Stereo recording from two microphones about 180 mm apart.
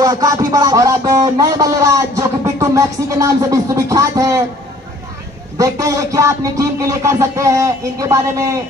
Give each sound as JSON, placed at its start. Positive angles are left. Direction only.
{"t": 0.0, "sound": "speech", "side_deg": -20}
{"t": 5.6, "sound": "speech", "side_deg": -20}